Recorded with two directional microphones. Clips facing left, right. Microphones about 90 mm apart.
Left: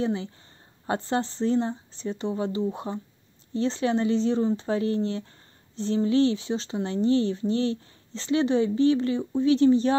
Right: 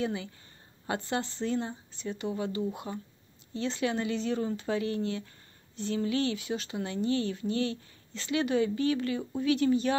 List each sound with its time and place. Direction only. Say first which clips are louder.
0.0 s speech: left 5 dB; 30° left (ahead or behind)